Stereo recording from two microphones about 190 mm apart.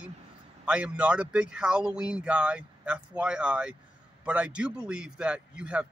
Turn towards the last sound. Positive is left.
turn(degrees=-5)  # may be behind; listen again after turning